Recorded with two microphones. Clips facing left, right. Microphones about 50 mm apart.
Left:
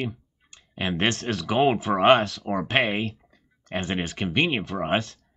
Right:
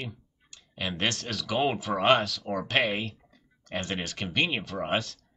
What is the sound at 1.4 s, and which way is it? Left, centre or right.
Speech, left.